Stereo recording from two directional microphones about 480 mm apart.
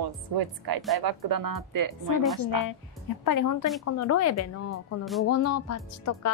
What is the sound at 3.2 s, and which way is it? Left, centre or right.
Speech, left.